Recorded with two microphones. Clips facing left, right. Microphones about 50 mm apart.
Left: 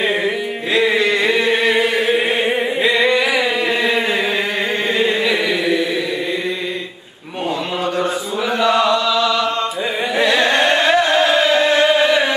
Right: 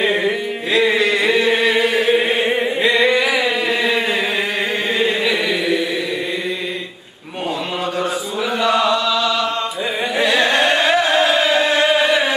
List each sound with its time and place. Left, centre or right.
0.0 s music: centre
0.7 s chant: centre
8.5 s chant: centre
10.1 s carnatic music: centre